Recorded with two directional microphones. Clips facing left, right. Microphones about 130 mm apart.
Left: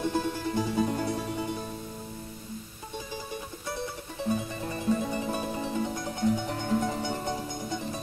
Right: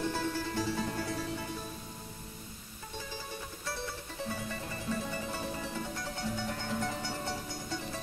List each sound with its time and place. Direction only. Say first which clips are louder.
0.1 s music: left 5 dB; 20° left (ahead or behind)
4.3 s music: left 10 dB; 20° left (ahead or behind)